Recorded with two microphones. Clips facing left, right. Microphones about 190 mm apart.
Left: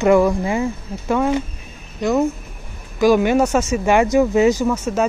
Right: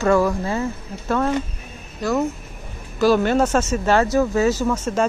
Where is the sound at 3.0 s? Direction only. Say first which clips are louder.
Left 2 dB; 15° left (ahead or behind).